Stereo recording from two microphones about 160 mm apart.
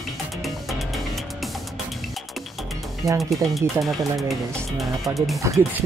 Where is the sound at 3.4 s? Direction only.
Centre (ahead or behind).